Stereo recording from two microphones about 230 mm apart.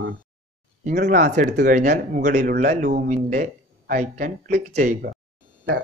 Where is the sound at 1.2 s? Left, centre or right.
Right.